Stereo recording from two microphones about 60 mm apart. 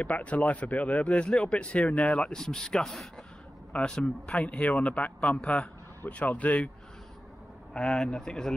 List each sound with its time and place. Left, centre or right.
0.0 s speech: left
2.1 s speech: centre; by 6.6 s left
7.7 s speech: centre